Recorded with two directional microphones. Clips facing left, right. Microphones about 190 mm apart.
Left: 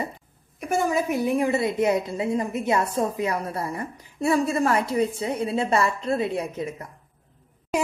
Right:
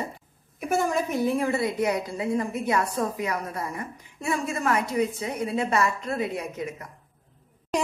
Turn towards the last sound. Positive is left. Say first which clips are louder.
# left 2 dB
turn(degrees=5)  # may be behind; listen again after turning